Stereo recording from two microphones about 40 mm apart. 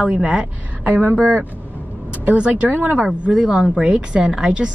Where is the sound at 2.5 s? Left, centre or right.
Right.